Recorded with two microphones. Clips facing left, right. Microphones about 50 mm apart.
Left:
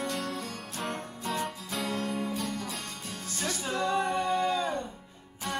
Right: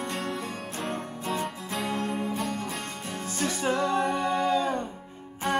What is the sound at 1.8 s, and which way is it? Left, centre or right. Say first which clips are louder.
Music: right 2 dB; right.